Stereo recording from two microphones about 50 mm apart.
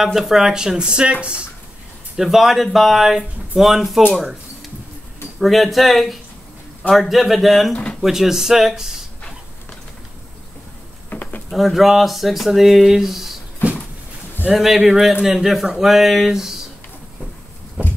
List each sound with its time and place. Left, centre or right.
0.0 s speech: centre; by 1.4 s right
2.1 s speech: centre
5.4 s speech: centre
7.7 s speech: centre
8.0 s speech: centre
11.1 s a sound: left
11.5 s speech: centre
14.5 s speech: centre
17.8 s heart murmur: right